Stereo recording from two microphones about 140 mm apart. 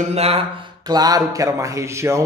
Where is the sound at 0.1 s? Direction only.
45° right (ahead or behind).